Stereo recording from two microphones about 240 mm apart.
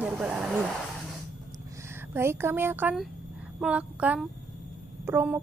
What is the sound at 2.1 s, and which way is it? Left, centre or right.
A woman's voice, centre.